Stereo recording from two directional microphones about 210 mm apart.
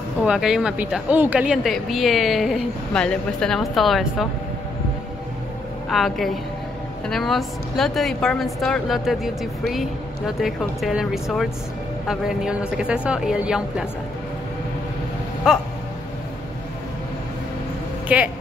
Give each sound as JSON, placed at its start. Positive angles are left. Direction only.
{"t": 0.2, "sound": "a woman's voice", "side_deg": -5}
{"t": 5.9, "sound": "a woman's voice", "side_deg": 0}
{"t": 15.5, "sound": "a woman's voice", "side_deg": -5}
{"t": 18.0, "sound": "speech", "side_deg": -5}